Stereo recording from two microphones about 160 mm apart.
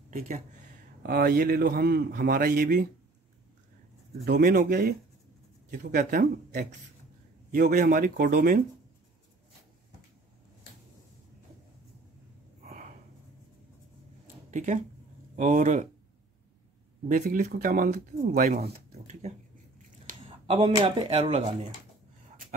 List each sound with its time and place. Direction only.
1.0 s a man's voice: 70° right (ahead or behind)
4.2 s a man's voice: 65° right (ahead or behind)
14.5 s speech: 50° right (ahead or behind)
17.1 s speech: 60° right (ahead or behind)
18.9 s speech: 40° right (ahead or behind)